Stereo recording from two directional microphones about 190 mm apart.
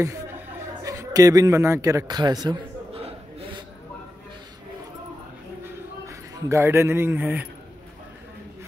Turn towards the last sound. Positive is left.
turn(degrees=-10)  # may be behind; listen again after turning